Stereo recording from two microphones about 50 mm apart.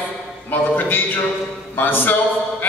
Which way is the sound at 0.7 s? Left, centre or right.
Left.